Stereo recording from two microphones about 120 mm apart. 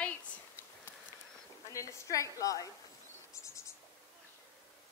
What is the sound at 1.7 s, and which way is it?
A woman's voice, 25° left (ahead or behind).